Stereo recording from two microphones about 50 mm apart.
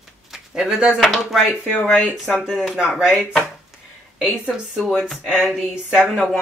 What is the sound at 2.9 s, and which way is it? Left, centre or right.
Speech, centre.